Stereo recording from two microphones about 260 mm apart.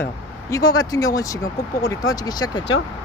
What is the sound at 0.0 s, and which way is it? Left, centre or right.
Speech, centre.